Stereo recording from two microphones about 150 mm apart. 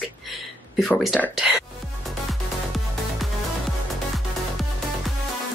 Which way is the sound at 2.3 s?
Centre (ahead or behind).